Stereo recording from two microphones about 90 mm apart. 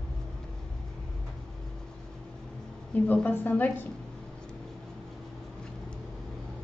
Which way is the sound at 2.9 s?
15° left (ahead or behind).